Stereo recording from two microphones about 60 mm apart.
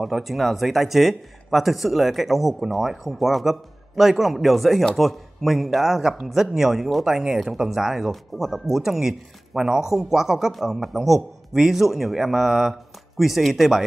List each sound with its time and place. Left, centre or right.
0.0 s speech: centre